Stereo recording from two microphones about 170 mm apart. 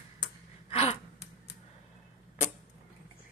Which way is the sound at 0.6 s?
35° left (ahead or behind).